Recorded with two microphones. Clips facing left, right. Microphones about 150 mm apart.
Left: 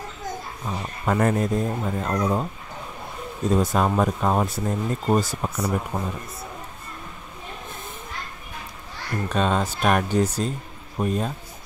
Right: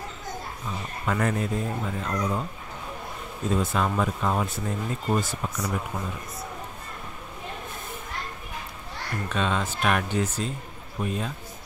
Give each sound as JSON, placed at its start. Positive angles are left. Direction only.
{"t": 0.7, "sound": "speech", "side_deg": 40}
{"t": 3.4, "sound": "speech", "side_deg": 40}
{"t": 9.3, "sound": "speech", "side_deg": 40}